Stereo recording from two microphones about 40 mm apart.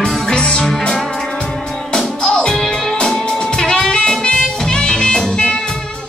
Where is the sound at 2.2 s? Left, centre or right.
Centre.